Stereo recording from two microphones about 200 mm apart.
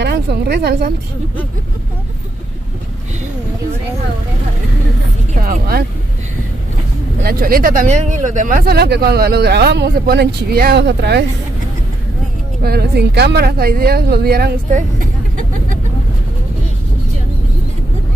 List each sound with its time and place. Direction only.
0.0 s a woman's voice: 55° right (ahead or behind)
5.3 s speech: 45° right (ahead or behind)
7.2 s speech: 45° right (ahead or behind)
12.6 s speech: 50° right (ahead or behind)